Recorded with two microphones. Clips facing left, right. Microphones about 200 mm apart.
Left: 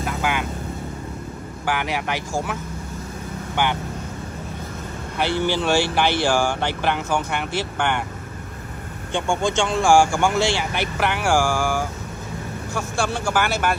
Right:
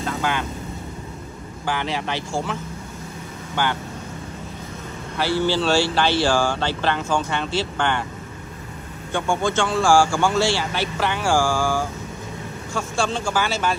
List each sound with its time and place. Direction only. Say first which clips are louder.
0.0 s speech: even; 10° left (ahead or behind)
1.7 s speech: left 1 dB; 15° left (ahead or behind)
5.1 s speech: right 1 dB; 20° left (ahead or behind)
9.1 s speech: even; 15° left (ahead or behind)